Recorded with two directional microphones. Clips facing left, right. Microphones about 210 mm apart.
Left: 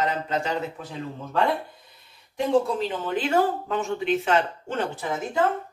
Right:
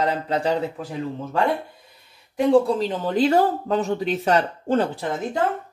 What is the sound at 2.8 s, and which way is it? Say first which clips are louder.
Speech: right 6 dB; 35° right (ahead or behind).